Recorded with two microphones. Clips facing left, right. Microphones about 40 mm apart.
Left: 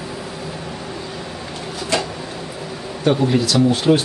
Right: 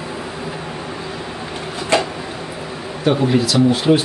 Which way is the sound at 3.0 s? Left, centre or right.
Centre.